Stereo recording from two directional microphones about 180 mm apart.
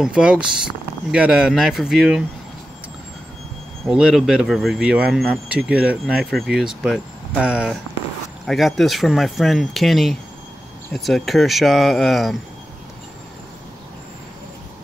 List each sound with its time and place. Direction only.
0.0 s speech: 5° right (ahead or behind)
3.8 s speech: centre (ahead or behind)